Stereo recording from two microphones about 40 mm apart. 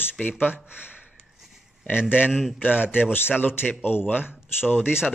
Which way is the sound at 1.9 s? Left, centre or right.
Left.